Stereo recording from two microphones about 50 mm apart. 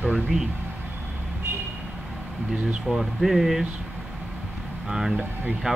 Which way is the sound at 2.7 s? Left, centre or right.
Centre.